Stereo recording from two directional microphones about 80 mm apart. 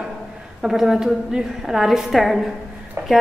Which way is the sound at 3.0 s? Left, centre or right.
Right.